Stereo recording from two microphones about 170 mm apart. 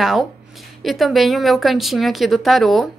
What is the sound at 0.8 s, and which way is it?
Speech, centre (ahead or behind).